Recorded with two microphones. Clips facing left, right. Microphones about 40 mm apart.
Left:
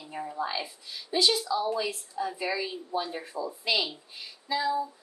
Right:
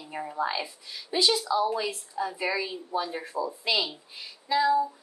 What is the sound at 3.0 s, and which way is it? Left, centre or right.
Speech, centre.